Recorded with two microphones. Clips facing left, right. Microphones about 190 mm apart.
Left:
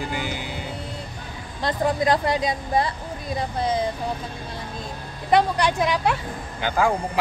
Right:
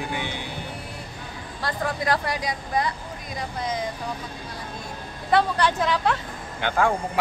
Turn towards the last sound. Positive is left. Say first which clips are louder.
# left 1 dB
turn(degrees=5)  # may be behind; listen again after turning